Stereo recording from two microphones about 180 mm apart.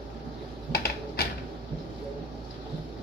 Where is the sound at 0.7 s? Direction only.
60° left (ahead or behind).